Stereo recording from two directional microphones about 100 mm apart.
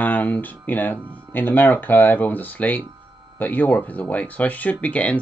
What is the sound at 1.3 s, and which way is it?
Speech, 20° left (ahead or behind).